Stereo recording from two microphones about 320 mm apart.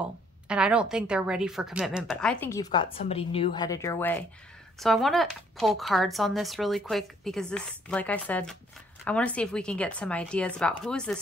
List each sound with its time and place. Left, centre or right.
0.0 s speech: centre